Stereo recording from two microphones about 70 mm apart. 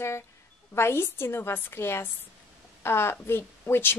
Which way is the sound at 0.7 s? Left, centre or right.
Left.